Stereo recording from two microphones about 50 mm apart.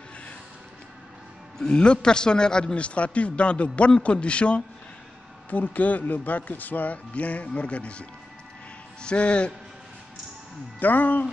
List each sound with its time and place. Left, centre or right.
1.6 s a man's voice: centre
5.5 s a man's voice: left
10.8 s a man's voice: left